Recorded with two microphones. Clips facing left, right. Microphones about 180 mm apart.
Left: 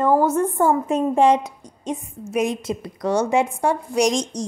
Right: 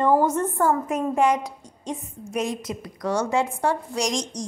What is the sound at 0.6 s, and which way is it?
A woman's voice, 25° left (ahead or behind).